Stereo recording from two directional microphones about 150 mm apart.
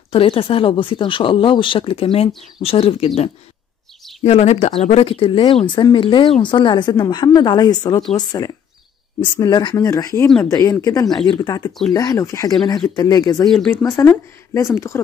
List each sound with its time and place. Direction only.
0.1 s speech: 35° left (ahead or behind)
4.2 s a woman's voice: 45° left (ahead or behind); by 15.0 s 20° left (ahead or behind)